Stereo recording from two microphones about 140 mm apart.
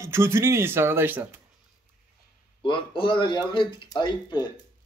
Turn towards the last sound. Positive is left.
turn(degrees=30)  # may be behind; listen again after turning